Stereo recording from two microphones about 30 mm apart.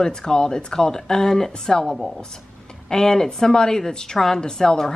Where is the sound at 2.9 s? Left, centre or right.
Left.